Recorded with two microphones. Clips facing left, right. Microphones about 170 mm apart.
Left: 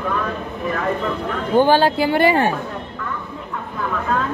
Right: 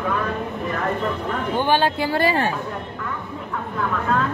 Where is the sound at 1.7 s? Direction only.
35° left (ahead or behind).